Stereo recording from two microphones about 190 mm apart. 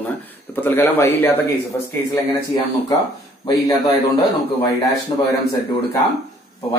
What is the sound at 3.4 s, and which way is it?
Speech, 20° left (ahead or behind).